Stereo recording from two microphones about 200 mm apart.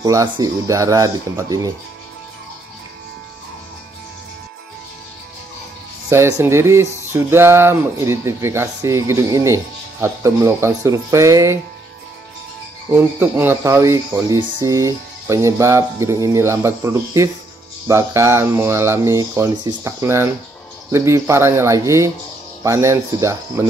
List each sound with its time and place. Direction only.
0.0 s speech: 20° right (ahead or behind)
6.0 s speech: 15° right (ahead or behind)
12.9 s speech: 10° right (ahead or behind)